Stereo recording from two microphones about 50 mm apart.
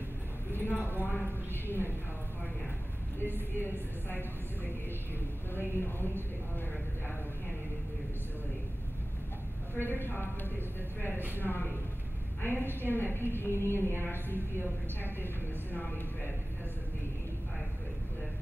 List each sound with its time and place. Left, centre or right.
0.5 s a sound: left
0.8 s a woman's voice: left
3.5 s a woman's voice: left
5.5 s a woman's voice: left
9.8 s a woman's voice: left
15.0 s a woman's voice: left